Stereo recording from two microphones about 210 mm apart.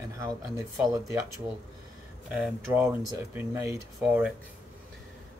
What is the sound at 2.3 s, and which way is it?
Speech, 5° right (ahead or behind).